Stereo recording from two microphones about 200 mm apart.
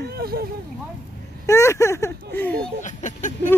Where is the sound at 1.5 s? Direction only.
15° left (ahead or behind).